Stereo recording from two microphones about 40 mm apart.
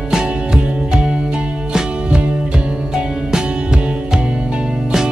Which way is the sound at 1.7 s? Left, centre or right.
Centre.